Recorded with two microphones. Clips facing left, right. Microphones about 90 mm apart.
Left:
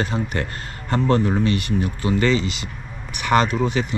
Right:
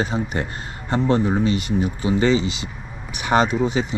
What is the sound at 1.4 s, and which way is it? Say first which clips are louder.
Speech: even; 55° left (ahead or behind).